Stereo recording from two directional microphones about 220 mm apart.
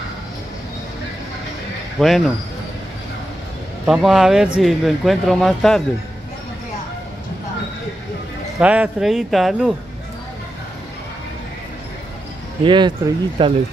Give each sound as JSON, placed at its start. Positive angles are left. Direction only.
{"t": 2.0, "sound": "speech", "side_deg": 0}
{"t": 3.8, "sound": "speech", "side_deg": 0}
{"t": 8.5, "sound": "speech", "side_deg": -5}
{"t": 12.6, "sound": "speech", "side_deg": -20}